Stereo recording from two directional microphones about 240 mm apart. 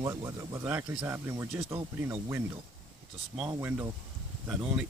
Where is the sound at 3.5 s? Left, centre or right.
Centre.